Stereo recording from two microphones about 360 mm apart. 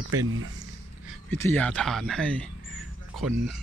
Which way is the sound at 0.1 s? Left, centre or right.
Right.